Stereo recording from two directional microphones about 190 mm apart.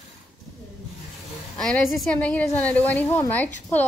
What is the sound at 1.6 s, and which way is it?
A woman's voice, 5° left (ahead or behind).